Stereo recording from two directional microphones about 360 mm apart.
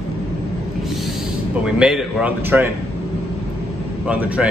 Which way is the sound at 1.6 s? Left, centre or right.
Centre.